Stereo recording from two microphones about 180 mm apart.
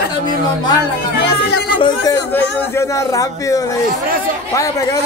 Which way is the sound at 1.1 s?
70° left (ahead or behind).